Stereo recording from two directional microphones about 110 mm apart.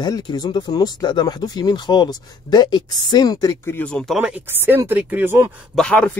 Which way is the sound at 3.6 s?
20° left (ahead or behind).